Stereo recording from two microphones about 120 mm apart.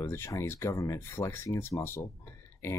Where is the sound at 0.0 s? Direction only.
20° left (ahead or behind).